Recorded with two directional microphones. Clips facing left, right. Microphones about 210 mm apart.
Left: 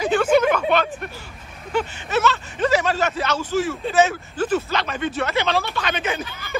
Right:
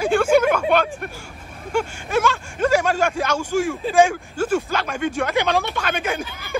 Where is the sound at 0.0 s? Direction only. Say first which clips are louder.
Right 1 dB; 10° right (ahead or behind).